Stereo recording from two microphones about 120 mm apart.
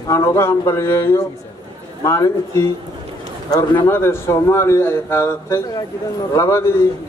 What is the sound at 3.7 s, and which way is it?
A man's voice, 20° left (ahead or behind).